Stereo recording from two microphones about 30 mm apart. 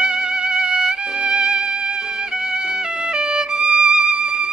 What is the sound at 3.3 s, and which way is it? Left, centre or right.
Violin, right.